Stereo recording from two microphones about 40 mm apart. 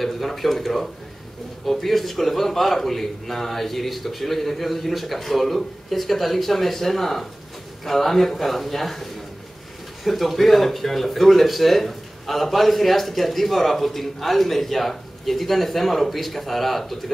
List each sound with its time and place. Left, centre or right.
0.0 s speech: centre